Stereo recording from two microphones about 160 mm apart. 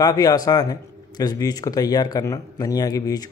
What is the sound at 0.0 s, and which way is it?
Speech, 25° left (ahead or behind).